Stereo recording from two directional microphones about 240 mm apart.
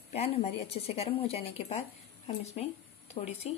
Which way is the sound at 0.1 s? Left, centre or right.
Left.